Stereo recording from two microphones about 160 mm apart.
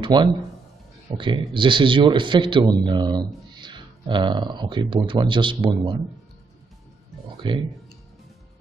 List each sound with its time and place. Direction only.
0.0 s speech: 30° right (ahead or behind)
7.3 s speech: 30° right (ahead or behind)